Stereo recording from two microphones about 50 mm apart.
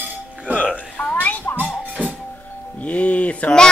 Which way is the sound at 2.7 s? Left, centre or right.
Left.